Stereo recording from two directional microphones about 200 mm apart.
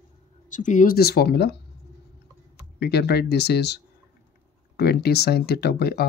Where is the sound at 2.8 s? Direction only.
55° left (ahead or behind).